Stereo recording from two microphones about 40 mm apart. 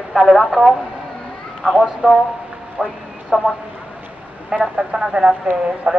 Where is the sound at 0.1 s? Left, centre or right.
Centre.